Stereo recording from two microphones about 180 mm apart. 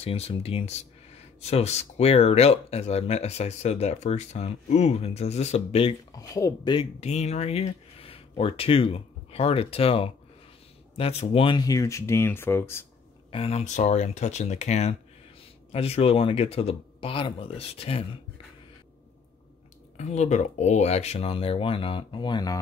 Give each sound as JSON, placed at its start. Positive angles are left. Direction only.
{"t": 0.0, "sound": "speech", "side_deg": 35}
{"t": 6.1, "sound": "speech", "side_deg": 20}
{"t": 13.3, "sound": "speech", "side_deg": 35}
{"t": 20.0, "sound": "speech", "side_deg": 40}